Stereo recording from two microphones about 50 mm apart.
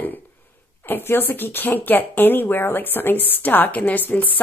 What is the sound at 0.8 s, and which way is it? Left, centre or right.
A woman's voice, left.